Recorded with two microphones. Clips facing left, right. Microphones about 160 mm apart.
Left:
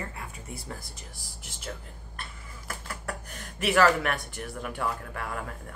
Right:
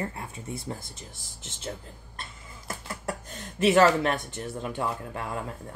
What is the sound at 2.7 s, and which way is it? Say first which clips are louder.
Speech: right 3 dB; 25° right (ahead or behind).